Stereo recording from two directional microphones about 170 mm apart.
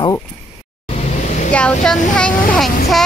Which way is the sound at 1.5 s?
5° left (ahead or behind).